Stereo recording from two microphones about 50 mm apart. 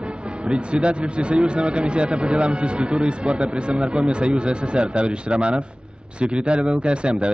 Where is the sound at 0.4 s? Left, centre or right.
Right.